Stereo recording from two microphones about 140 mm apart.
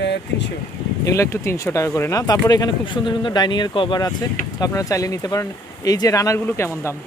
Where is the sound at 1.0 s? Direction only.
20° left (ahead or behind).